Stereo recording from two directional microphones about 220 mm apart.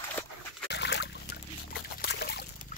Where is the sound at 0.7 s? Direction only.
50° left (ahead or behind).